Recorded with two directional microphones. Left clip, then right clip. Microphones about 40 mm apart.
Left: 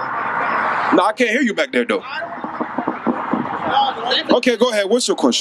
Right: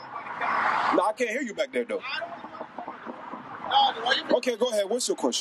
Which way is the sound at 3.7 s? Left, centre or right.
Right.